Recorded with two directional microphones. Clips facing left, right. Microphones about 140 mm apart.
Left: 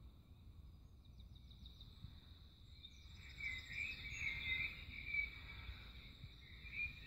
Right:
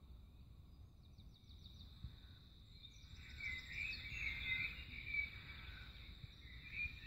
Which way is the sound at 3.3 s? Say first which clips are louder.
Even; 45° left (ahead or behind).